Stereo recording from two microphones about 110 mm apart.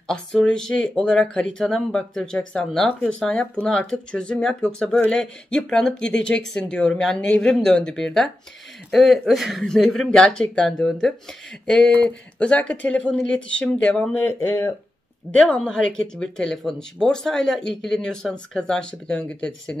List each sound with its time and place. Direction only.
0.1 s speech: 5° left (ahead or behind)
14.1 s speech: 20° left (ahead or behind)
15.3 s speech: 10° left (ahead or behind)